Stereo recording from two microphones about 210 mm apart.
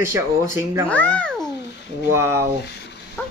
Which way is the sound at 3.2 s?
5° left (ahead or behind).